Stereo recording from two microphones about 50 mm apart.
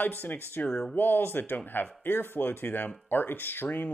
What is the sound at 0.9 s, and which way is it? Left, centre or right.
Speech, left.